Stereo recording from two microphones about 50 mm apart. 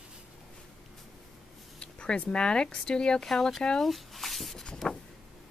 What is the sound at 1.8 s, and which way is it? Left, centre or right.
Speech, left.